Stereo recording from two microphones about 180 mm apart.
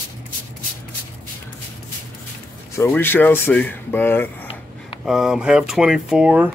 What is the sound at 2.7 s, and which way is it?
Speech, 15° left (ahead or behind).